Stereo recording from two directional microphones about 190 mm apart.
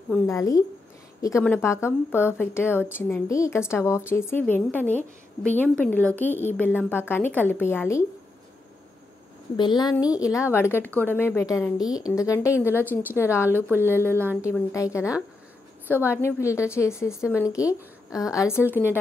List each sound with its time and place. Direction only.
0.3 s a woman's voice: 15° left (ahead or behind)
9.6 s a woman's voice: 25° left (ahead or behind)
13.7 s speech: 10° right (ahead or behind)
14.4 s a woman's voice: 15° left (ahead or behind)